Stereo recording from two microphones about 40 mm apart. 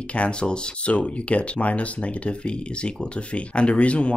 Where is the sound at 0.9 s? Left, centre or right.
Left.